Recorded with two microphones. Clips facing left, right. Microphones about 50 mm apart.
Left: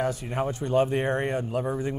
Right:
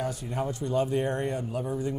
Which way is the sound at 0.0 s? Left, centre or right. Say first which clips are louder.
Left 4 dB; left.